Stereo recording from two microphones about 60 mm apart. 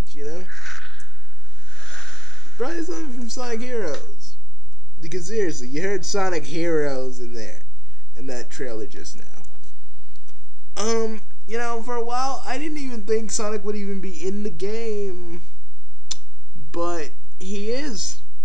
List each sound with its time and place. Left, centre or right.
0.0 s a sound: centre
5.0 s speech: centre
16.1 s clicking: centre
16.7 s speech: centre